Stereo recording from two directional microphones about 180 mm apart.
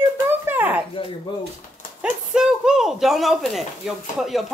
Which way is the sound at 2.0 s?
5° right (ahead or behind).